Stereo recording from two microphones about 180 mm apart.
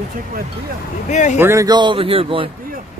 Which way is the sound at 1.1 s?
40° left (ahead or behind).